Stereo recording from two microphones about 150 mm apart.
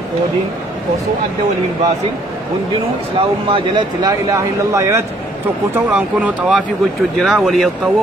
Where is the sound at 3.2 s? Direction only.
35° right (ahead or behind).